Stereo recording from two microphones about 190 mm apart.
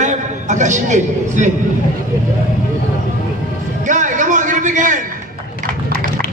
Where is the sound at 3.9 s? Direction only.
40° right (ahead or behind).